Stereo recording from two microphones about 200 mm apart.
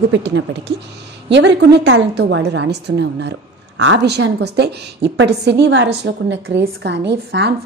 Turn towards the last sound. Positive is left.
turn(degrees=-60)  # may be behind; listen again after turning